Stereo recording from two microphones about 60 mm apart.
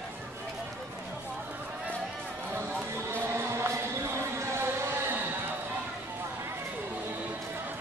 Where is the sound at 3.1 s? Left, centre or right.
Right.